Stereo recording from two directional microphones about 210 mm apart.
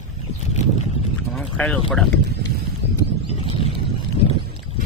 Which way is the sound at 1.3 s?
Centre (ahead or behind).